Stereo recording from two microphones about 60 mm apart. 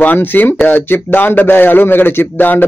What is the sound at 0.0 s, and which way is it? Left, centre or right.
A man's voice, left.